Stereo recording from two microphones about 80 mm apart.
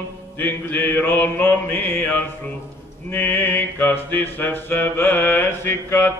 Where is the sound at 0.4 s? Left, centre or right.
Left.